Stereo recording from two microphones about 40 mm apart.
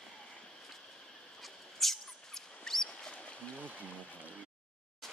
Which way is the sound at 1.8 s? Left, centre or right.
Centre.